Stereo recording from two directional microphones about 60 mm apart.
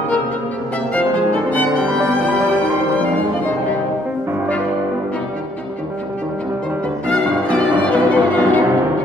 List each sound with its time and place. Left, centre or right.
0.9 s violin: left
7.1 s music: left